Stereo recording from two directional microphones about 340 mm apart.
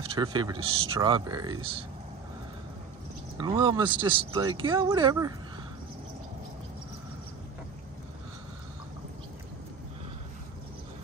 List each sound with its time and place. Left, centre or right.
0.1 s speech: centre
3.3 s speech: centre